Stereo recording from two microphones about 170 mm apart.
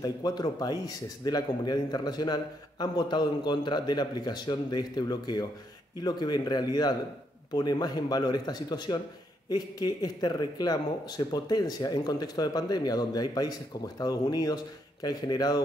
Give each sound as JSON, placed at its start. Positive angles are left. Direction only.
{"t": 0.0, "sound": "speech", "side_deg": 25}